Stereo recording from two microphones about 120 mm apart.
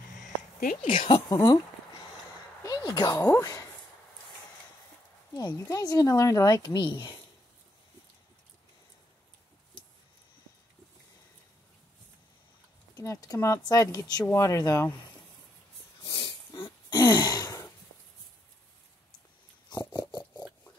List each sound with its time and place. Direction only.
0.2 s a sound: 90° left
1.3 s speech: 30° left (ahead or behind)
2.6 s speech: 30° left (ahead or behind)
5.4 s speech: 35° left (ahead or behind)
12.9 s speech: 30° left (ahead or behind)
16.1 s dog: 30° left (ahead or behind)
16.5 s throat clearing: 45° left (ahead or behind)
17.0 s gasp: 35° left (ahead or behind)
20.1 s rodents: 35° left (ahead or behind)